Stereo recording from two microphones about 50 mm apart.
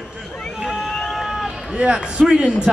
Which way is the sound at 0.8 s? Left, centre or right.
Centre.